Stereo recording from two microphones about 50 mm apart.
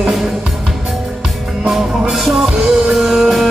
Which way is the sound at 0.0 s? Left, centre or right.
Centre.